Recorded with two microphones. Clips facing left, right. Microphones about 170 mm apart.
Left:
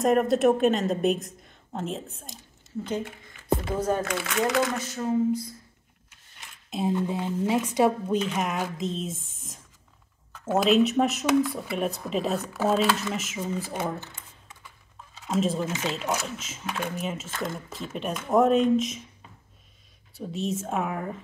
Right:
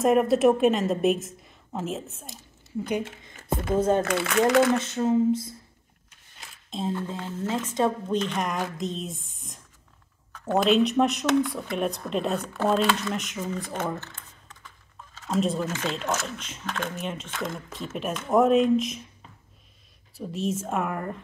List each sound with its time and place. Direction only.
0.0 s speech: centre (ahead or behind)
2.8 s speech: 15° right (ahead or behind)
3.7 s speech: 25° right (ahead or behind)
6.7 s speech: 15° left (ahead or behind)
15.2 s speech: centre (ahead or behind)
20.2 s speech: centre (ahead or behind)